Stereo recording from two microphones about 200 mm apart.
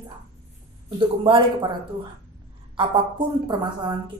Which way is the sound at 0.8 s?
25° right (ahead or behind).